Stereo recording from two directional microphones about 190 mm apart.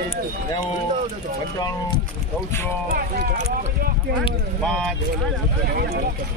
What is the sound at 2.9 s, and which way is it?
Speech, 45° right (ahead or behind).